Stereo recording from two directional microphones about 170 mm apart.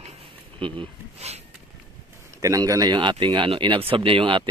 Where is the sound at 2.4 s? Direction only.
20° right (ahead or behind).